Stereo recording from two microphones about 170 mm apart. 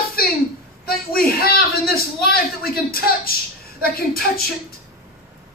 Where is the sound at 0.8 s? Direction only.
60° left (ahead or behind).